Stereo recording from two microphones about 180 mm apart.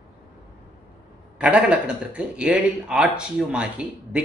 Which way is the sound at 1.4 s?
5° right (ahead or behind).